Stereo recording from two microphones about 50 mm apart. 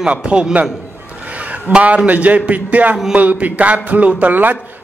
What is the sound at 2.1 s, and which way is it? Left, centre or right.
Speech, right.